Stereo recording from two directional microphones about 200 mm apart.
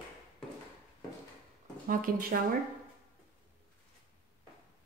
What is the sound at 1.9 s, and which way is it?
Speech, 45° right (ahead or behind).